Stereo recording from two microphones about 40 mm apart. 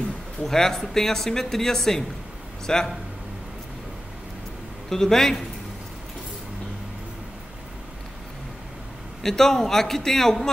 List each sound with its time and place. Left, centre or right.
0.4 s speech: centre
4.8 s speech: centre
9.2 s speech: centre